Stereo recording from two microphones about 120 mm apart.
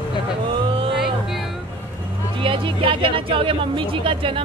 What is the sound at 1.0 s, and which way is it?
Music, centre (ahead or behind).